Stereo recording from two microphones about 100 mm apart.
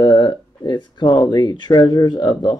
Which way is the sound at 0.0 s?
35° left (ahead or behind).